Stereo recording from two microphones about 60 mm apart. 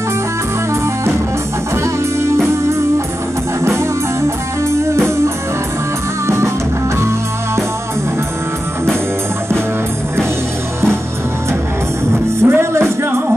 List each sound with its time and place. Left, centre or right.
4.6 s music: right
12.4 s music: right